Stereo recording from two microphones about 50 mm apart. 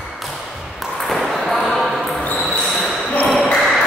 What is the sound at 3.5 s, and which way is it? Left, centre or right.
Music, centre.